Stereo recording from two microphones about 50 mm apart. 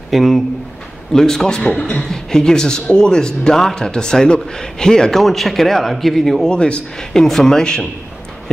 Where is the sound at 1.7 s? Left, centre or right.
Left.